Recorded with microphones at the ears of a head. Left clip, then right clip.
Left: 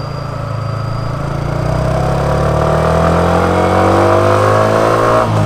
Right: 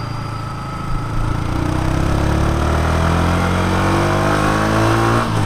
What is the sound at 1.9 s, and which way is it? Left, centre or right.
Vehicle, left.